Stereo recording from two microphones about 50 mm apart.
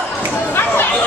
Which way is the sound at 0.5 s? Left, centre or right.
Left.